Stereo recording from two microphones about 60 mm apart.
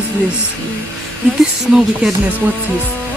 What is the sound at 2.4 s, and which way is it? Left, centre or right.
Music, right.